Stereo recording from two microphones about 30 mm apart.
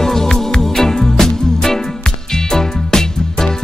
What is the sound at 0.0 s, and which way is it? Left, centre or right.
Music, centre.